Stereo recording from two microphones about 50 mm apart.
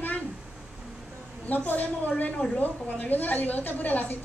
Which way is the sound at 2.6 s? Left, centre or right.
Left.